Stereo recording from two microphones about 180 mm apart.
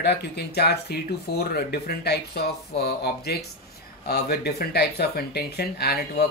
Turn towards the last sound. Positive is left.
turn(degrees=60)  # may be behind; listen again after turning